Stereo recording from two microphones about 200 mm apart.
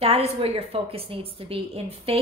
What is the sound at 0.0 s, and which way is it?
A woman's voice, 30° right (ahead or behind).